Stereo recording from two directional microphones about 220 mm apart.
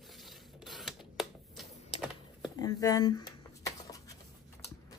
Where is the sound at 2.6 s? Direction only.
15° left (ahead or behind).